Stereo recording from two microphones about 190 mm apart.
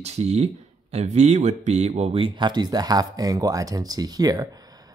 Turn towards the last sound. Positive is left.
turn(degrees=-20)  # may be behind; listen again after turning